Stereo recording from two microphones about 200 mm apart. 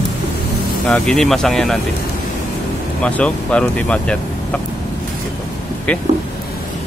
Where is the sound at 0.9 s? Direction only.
5° left (ahead or behind).